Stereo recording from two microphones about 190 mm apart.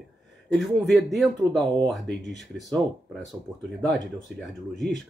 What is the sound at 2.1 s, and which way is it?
Speech, 65° right (ahead or behind).